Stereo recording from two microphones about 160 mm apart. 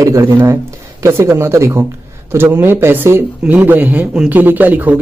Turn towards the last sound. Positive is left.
turn(degrees=-10)  # may be behind; listen again after turning